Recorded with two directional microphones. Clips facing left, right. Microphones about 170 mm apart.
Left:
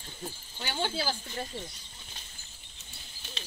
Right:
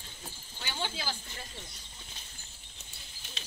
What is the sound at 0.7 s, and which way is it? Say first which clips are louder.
Speech: left 5 dB; 35° left (ahead or behind).